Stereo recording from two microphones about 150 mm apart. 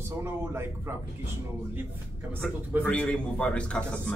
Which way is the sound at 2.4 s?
5° left (ahead or behind).